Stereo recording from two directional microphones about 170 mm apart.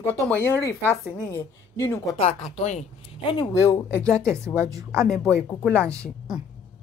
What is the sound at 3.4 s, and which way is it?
Speech, 15° left (ahead or behind).